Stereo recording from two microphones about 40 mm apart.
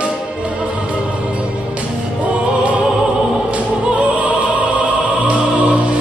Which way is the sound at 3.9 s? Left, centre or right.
Right.